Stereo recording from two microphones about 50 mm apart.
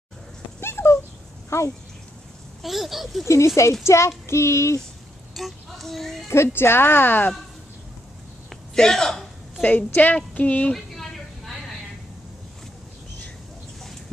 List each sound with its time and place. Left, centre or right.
0.6 s dog: left
1.5 s speech: left
2.6 s speech: centre
3.3 s speech: left
5.3 s speech: centre
6.2 s speech: left
8.7 s a woman's voice: centre
9.6 s a woman's voice: left
10.7 s a sound: centre